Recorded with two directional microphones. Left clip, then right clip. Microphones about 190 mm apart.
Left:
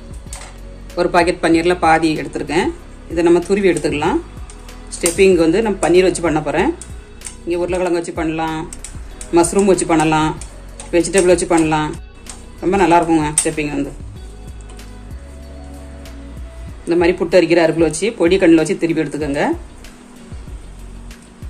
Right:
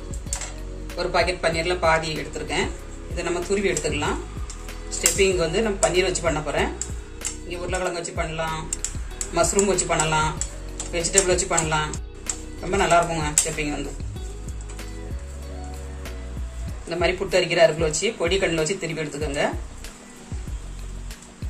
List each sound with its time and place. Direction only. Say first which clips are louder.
0.9 s speech: left 8 dB; 65° left (ahead or behind)
5.1 s speech: left 10 dB; 60° left (ahead or behind)
9.8 s speech: left 7 dB; 60° left (ahead or behind)
16.9 s speech: left 9 dB; 55° left (ahead or behind)